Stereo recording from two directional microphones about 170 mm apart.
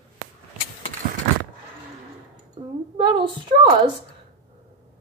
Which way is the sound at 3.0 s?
30° right (ahead or behind).